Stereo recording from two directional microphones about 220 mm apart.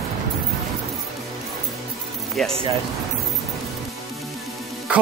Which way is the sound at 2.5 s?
25° right (ahead or behind).